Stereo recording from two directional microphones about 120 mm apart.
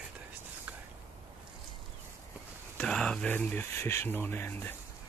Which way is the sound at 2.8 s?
5° left (ahead or behind).